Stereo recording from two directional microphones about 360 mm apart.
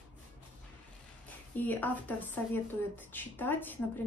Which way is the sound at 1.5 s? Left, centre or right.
Centre.